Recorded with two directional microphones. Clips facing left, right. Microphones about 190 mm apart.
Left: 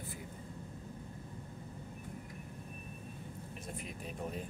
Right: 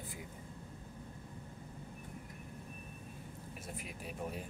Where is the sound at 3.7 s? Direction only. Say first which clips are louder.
Even; 10° right (ahead or behind).